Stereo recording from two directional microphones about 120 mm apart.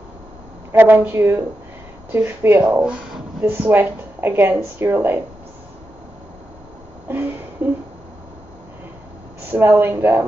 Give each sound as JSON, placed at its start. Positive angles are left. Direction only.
{"t": 0.7, "sound": "a woman's voice", "side_deg": -15}
{"t": 2.6, "sound": "a woman's voice", "side_deg": -10}
{"t": 7.6, "sound": "a sound", "side_deg": -15}
{"t": 9.5, "sound": "a woman's voice", "side_deg": -15}